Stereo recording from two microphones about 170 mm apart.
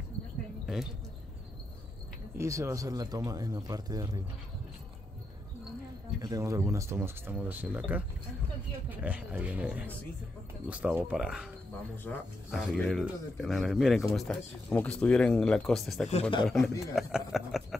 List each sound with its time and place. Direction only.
0.7 s a sound: 5° right (ahead or behind)
2.3 s speech: 15° right (ahead or behind)
6.2 s speech: 20° right (ahead or behind); by 11.4 s 5° right (ahead or behind)
12.1 s speech: 10° left (ahead or behind)
16.1 s speech: 35° left (ahead or behind)
16.4 s speech: centre (ahead or behind)
17.3 s a sound: centre (ahead or behind)